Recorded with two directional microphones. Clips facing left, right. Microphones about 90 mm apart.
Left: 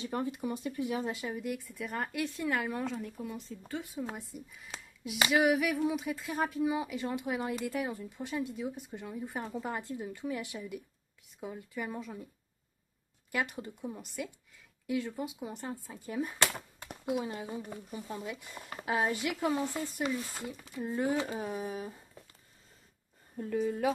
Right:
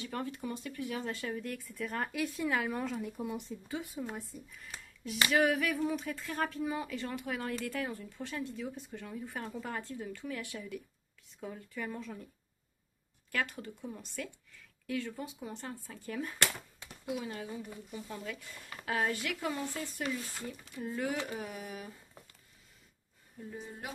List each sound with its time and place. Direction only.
0.0 s speech: 20° left (ahead or behind); by 3.2 s 5° right (ahead or behind)
3.2 s speech: 20° right (ahead or behind)
3.7 s speech: centre (ahead or behind)
13.3 s speech: 15° left (ahead or behind)
17.6 s speech: 35° left (ahead or behind)
23.4 s a woman's voice: 45° left (ahead or behind)